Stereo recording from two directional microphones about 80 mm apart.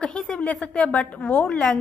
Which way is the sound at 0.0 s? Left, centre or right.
Centre.